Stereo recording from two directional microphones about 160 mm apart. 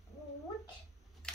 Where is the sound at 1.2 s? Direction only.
5° left (ahead or behind).